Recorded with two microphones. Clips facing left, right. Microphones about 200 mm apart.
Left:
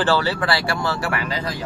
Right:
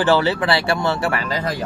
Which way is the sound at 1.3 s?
45° right (ahead or behind).